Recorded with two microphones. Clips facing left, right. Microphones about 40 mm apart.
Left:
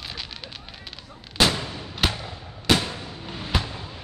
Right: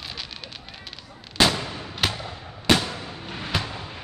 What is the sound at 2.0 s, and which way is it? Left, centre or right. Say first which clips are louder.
Fireworks: left 1 dB; centre.